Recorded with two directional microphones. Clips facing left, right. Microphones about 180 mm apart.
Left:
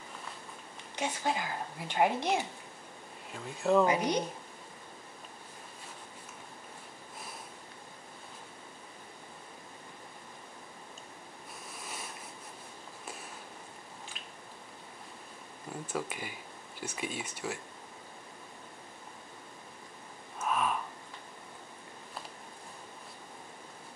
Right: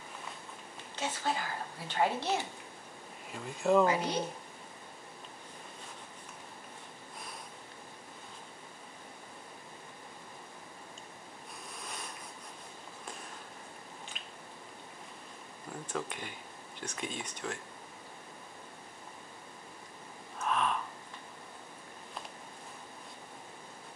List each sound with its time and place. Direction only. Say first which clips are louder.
0.9 s a woman's voice: left 2 dB; 15° left (ahead or behind)
3.3 s speech: even; centre (ahead or behind)
3.8 s a woman's voice: left 2 dB; 15° left (ahead or behind)
11.8 s a sound: left 1 dB; 5° left (ahead or behind)
15.9 s a woman's voice: left 1 dB; 5° left (ahead or behind)
20.3 s gasp: left 1 dB; 5° left (ahead or behind)